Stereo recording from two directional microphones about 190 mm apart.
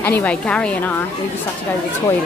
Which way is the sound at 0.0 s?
10° left (ahead or behind).